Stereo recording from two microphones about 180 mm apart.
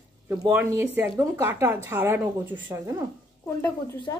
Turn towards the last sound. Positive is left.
turn(degrees=10)  # may be behind; listen again after turning